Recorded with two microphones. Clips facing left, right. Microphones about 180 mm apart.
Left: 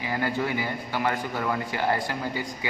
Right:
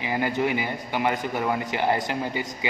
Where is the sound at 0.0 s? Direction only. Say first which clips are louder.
Right 3 dB; 20° right (ahead or behind).